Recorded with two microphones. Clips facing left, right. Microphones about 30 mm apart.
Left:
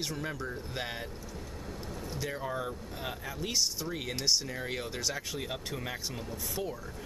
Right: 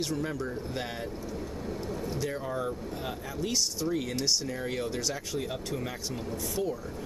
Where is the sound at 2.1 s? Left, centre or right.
Centre.